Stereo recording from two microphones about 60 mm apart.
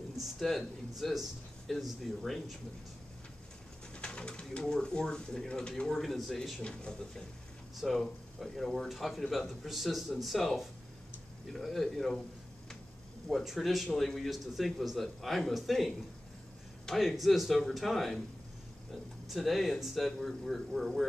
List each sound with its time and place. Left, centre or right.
0.2 s speech: centre
3.9 s speech: centre
6.6 s speech: centre
7.7 s speech: centre
13.3 s speech: centre
17.0 s speech: centre
19.2 s speech: centre